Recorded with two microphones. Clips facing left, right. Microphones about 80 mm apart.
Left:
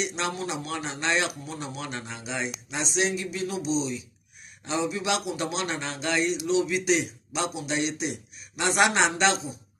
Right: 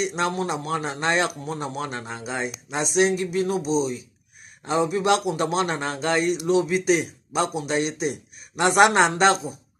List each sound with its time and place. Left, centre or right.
0.0 s a man's voice: right